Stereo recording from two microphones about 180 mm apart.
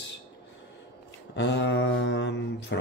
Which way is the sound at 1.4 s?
75° left (ahead or behind).